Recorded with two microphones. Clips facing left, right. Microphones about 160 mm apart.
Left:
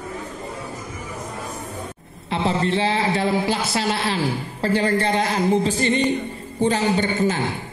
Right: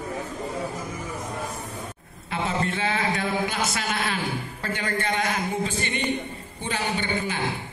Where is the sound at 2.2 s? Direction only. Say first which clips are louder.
Left 5 dB; 25° left (ahead or behind).